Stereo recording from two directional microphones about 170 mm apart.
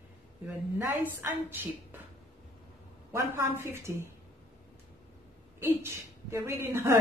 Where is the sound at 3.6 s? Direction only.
15° right (ahead or behind).